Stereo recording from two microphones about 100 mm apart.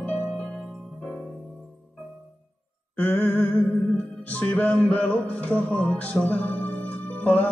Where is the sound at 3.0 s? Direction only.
20° left (ahead or behind).